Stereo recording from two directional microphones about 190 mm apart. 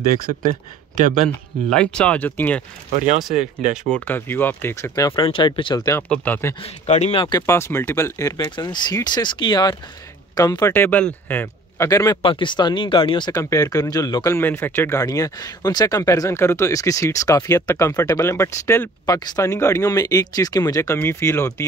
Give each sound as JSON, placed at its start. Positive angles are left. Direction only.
{"t": 0.1, "sound": "speech", "side_deg": -40}
{"t": 1.7, "sound": "speech", "side_deg": 5}
{"t": 3.7, "sound": "speech", "side_deg": 5}
{"t": 6.0, "sound": "speech", "side_deg": 5}
{"t": 6.6, "sound": "speech", "side_deg": 35}